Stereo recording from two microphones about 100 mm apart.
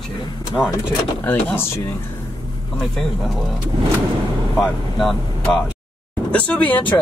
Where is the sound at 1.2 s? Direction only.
20° left (ahead or behind).